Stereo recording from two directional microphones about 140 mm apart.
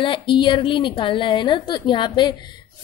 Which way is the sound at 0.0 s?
35° left (ahead or behind).